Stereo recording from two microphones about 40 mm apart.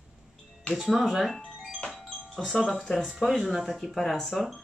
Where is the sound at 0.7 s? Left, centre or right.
Centre.